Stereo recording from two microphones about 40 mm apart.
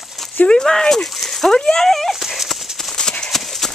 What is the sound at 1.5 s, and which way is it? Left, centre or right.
Speech, centre.